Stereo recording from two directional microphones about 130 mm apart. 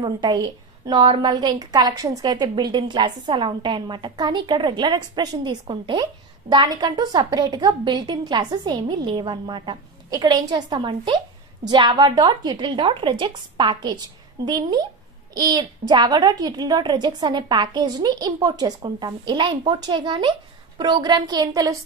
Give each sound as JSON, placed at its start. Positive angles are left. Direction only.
{"t": 0.0, "sound": "a woman's voice", "side_deg": -35}